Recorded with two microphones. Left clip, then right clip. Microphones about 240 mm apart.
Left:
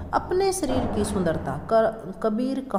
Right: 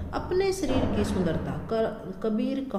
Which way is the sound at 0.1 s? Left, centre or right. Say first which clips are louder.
Left 4 dB; left.